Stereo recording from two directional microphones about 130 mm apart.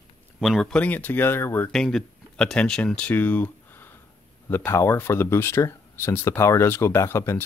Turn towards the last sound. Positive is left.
turn(degrees=20)  # may be behind; listen again after turning